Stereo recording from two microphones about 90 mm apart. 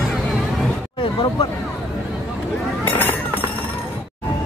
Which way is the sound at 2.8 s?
20° left (ahead or behind).